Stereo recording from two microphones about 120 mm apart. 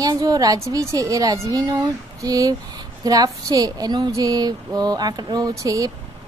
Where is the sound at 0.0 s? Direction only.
30° right (ahead or behind).